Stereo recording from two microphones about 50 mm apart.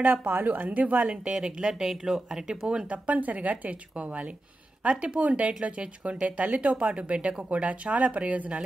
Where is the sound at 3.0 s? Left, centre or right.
Right.